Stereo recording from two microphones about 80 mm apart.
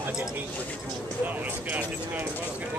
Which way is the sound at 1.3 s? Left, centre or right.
Right.